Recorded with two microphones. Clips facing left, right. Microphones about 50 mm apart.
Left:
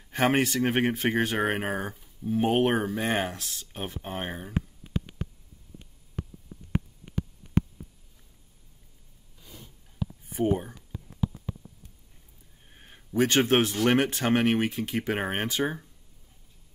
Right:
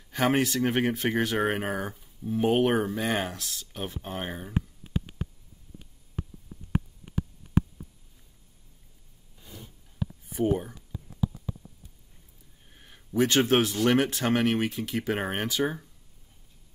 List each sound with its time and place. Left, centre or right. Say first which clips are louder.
0.1 s speech: left 1 dB; left; by 2.6 s centre
3.0 s speech: left 1 dB; left
10.3 s speech: even; centre
12.6 s speech: left 2 dB; left